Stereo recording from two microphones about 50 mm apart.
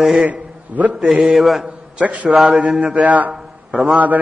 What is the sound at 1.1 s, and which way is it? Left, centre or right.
Mantra, centre.